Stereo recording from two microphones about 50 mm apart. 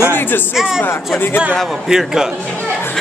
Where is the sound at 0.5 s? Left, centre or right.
Centre.